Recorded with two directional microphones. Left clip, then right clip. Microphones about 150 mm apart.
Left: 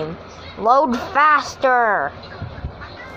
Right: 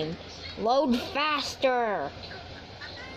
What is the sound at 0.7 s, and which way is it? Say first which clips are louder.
Speech: left 10 dB; 15° right (ahead or behind).